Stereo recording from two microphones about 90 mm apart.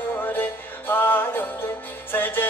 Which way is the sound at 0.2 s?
20° left (ahead or behind).